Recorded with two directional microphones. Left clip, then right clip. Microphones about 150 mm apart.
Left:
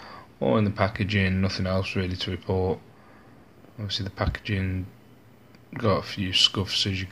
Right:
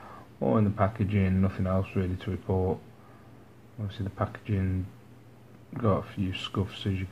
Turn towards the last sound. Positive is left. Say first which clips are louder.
# left 8 dB
turn(degrees=25)  # may be behind; listen again after turning